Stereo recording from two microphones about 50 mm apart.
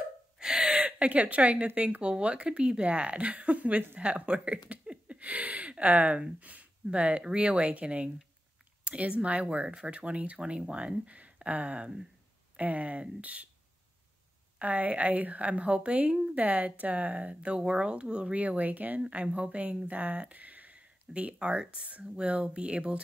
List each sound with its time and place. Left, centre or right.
0.4 s gasp: centre
0.8 s a woman's voice: right
6.4 s a sound: right
6.9 s a woman's voice: right
14.6 s a woman's voice: right
18.3 s a woman's voice: right